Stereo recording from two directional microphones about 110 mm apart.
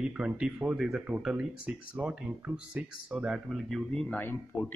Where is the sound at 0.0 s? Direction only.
10° right (ahead or behind).